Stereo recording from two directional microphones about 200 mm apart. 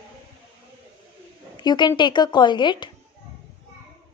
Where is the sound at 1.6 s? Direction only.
20° left (ahead or behind).